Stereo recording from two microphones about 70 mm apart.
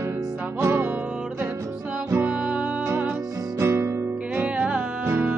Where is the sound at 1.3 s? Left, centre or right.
Right.